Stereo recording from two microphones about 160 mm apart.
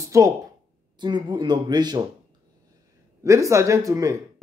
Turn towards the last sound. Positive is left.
turn(degrees=-20)  # may be behind; listen again after turning